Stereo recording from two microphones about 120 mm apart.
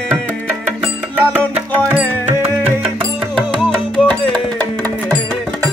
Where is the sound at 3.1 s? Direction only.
5° right (ahead or behind).